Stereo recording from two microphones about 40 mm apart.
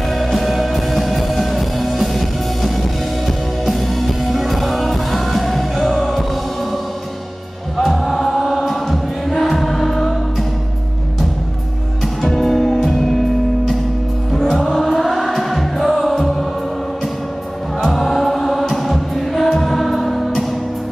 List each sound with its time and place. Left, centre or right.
0.1 s music: centre
7.7 s music: centre
12.0 s music: centre
14.3 s music: centre
17.9 s music: centre